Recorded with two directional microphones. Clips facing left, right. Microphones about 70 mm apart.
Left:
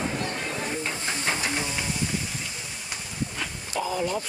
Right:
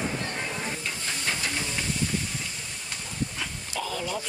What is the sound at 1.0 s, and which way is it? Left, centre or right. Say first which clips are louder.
Hiss: left 1 dB; left.